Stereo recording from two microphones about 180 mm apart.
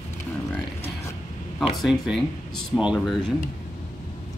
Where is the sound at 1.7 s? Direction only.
Centre (ahead or behind).